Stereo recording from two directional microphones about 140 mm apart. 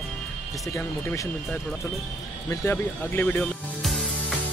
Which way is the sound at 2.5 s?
15° left (ahead or behind).